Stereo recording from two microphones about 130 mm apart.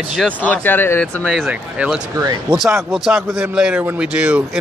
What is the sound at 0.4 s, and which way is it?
Speech, 15° left (ahead or behind).